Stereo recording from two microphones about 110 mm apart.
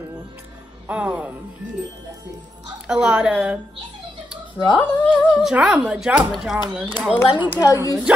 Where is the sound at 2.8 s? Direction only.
5° right (ahead or behind).